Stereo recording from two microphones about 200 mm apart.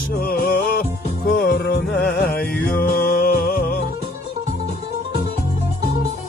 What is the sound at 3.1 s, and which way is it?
Music, 45° left (ahead or behind).